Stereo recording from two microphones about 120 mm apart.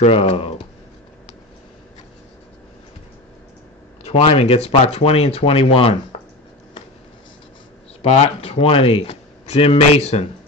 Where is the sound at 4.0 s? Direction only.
50° left (ahead or behind).